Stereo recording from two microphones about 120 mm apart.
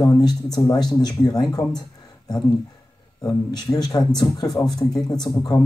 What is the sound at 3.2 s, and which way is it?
Speech, 35° left (ahead or behind).